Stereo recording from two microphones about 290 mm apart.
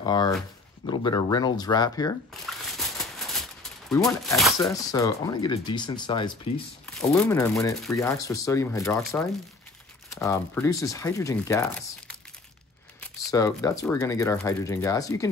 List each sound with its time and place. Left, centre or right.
0.0 s speech: centre
2.4 s a sound: centre
4.6 s speech: centre
6.9 s speech: centre